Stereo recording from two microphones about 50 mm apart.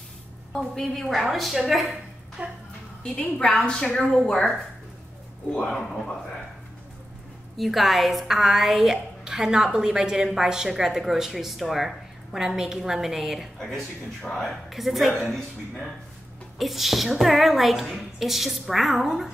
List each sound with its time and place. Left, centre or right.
0.5 s a woman's voice: centre
2.4 s speech: right
3.0 s a woman's voice: centre
7.5 s a woman's voice: centre
13.6 s a woman's voice: centre